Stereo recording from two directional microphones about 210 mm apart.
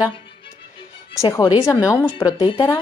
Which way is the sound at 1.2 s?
15° left (ahead or behind).